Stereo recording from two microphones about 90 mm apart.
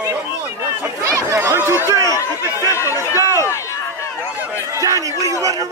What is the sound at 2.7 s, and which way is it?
Speech, 30° left (ahead or behind).